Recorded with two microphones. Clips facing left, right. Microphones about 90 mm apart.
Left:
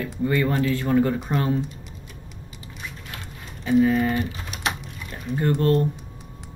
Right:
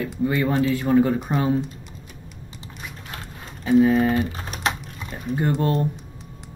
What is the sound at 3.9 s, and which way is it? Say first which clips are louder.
Speech: right 3 dB; 30° right (ahead or behind).